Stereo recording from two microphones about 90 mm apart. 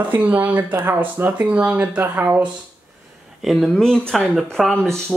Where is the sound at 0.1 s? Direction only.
20° right (ahead or behind).